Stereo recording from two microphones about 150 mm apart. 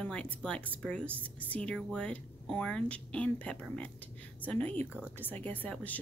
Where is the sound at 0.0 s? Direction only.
10° left (ahead or behind).